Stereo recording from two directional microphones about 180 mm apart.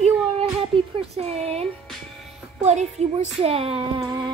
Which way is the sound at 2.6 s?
40° right (ahead or behind).